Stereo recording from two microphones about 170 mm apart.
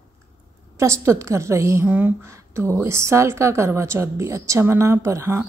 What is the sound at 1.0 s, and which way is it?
A woman's voice, 15° right (ahead or behind).